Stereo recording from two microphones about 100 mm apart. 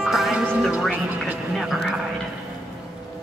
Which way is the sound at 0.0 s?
5° right (ahead or behind).